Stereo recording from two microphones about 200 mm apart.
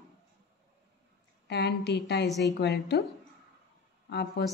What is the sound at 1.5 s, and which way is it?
A woman's voice, 55° left (ahead or behind).